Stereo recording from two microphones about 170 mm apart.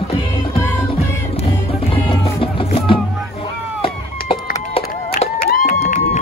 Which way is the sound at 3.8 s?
35° left (ahead or behind).